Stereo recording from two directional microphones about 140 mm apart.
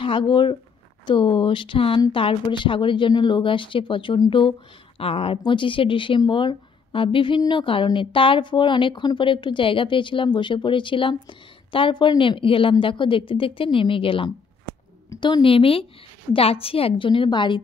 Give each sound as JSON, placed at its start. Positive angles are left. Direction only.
{"t": 0.0, "sound": "a woman's voice", "side_deg": 35}